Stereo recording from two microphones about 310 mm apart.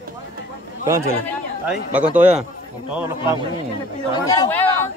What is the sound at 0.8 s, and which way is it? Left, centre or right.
A man's voice, centre.